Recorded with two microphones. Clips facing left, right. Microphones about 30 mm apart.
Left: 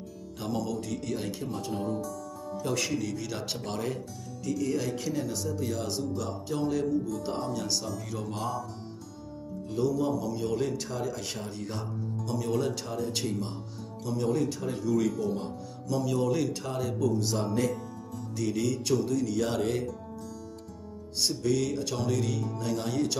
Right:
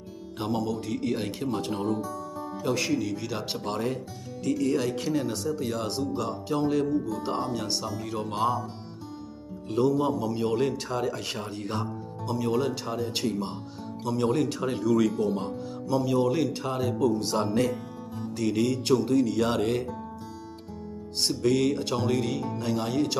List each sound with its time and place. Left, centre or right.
0.4 s speech: right
1.4 s speech: right
2.0 s speech: right
4.4 s a man's voice: right
9.7 s a man's voice: right; by 13.5 s centre
14.0 s speech: right
15.3 s speech: right
21.2 s speech: right